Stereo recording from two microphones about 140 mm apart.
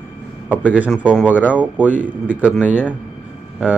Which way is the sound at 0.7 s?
10° right (ahead or behind).